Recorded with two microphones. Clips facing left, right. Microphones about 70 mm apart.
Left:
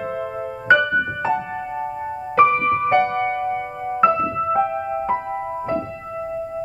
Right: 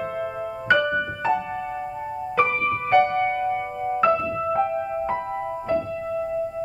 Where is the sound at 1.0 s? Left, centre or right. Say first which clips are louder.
Left 2 dB; centre.